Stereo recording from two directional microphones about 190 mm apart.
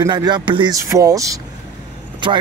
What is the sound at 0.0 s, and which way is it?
Speech, 20° right (ahead or behind).